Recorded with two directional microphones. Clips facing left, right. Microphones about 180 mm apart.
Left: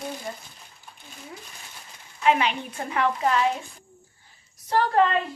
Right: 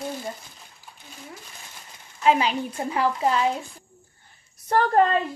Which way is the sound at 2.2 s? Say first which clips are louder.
Right 2 dB; 35° right (ahead or behind).